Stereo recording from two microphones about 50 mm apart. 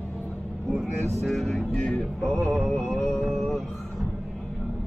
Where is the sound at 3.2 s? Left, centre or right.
Centre.